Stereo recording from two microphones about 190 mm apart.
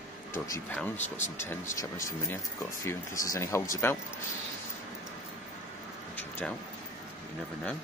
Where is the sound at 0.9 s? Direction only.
40° left (ahead or behind).